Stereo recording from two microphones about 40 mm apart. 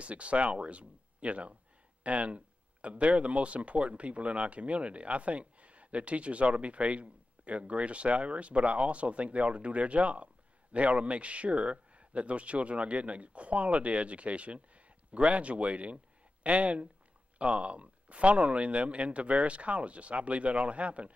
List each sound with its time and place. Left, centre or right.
0.0 s speech: right